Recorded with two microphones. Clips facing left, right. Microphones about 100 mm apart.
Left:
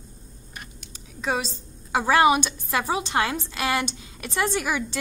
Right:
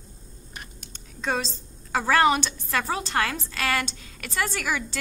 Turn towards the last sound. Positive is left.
turn(degrees=20)  # may be behind; listen again after turning